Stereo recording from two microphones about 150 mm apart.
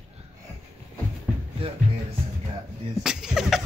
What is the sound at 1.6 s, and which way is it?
Speech, 35° right (ahead or behind).